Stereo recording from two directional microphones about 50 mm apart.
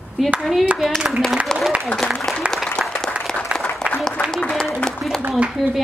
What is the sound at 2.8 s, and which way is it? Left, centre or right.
Applause, centre.